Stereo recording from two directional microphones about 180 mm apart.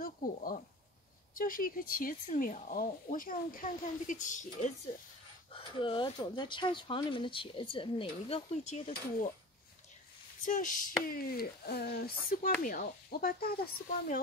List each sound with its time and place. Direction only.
0.0 s speech: 50° left (ahead or behind)
5.5 s speech: 30° left (ahead or behind)
10.4 s speech: 50° left (ahead or behind)